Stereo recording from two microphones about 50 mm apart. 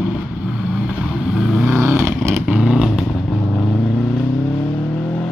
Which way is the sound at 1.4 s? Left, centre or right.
Centre.